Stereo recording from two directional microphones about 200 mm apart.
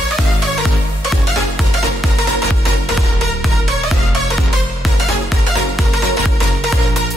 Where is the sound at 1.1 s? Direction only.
Centre (ahead or behind).